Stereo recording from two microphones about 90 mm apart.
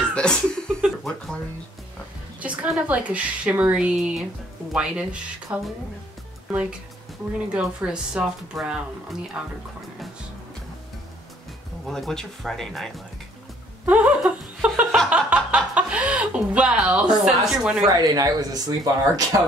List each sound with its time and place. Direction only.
0.1 s speech: 10° left (ahead or behind)
2.4 s speech: 15° right (ahead or behind)
11.9 s speech: 5° left (ahead or behind)
13.8 s a sound: 15° right (ahead or behind)
15.0 s speech: 15° right (ahead or behind)
17.8 s speech: 45° right (ahead or behind)